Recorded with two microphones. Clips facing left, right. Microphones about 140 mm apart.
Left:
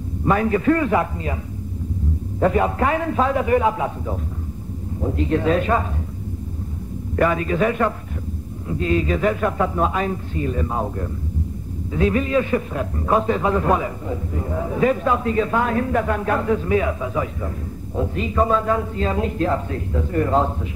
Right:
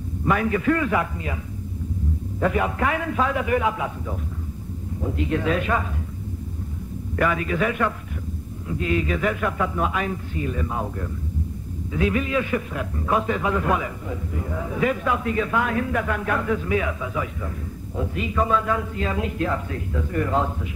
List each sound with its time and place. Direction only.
0.2 s a man's voice: 35° left (ahead or behind)
2.4 s a man's voice: 35° left (ahead or behind)
7.2 s a man's voice: 35° left (ahead or behind)